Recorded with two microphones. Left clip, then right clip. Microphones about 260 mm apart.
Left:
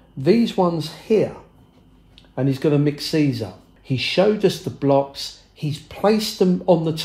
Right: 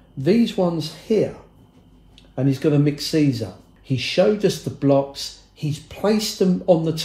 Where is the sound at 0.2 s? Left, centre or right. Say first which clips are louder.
Left 2 dB; left.